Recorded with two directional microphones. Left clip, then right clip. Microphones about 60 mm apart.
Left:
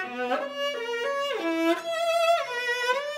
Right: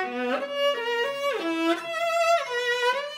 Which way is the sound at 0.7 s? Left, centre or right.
Right.